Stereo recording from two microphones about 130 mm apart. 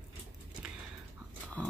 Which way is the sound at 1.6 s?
10° left (ahead or behind).